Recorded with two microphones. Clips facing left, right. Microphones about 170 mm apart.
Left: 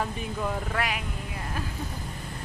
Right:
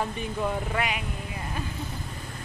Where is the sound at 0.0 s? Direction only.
5° right (ahead or behind).